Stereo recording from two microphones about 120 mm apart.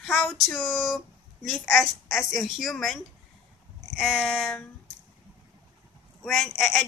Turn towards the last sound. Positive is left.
turn(degrees=0)  # may be behind; listen again after turning